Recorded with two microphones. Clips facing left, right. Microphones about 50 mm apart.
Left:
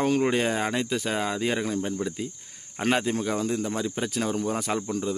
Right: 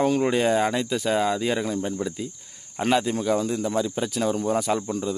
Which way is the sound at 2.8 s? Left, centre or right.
Left.